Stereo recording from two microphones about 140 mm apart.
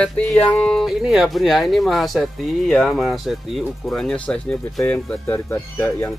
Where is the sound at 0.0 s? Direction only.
5° left (ahead or behind).